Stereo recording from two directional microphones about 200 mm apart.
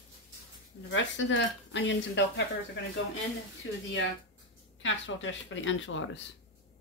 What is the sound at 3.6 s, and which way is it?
Speech, 65° left (ahead or behind).